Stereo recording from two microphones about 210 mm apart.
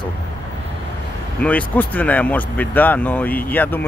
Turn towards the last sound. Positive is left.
turn(degrees=10)  # may be behind; listen again after turning